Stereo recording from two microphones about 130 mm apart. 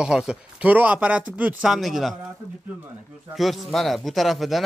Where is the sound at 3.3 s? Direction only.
Centre (ahead or behind).